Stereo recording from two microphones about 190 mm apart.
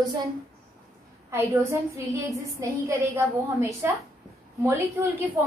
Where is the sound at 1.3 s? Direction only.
15° right (ahead or behind).